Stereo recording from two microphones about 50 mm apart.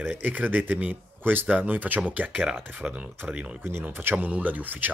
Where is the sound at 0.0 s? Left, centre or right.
Right.